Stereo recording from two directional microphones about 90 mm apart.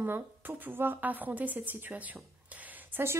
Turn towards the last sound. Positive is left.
turn(degrees=-25)  # may be behind; listen again after turning